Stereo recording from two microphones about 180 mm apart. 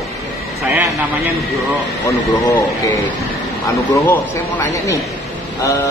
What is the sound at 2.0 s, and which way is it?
Speech, 15° left (ahead or behind).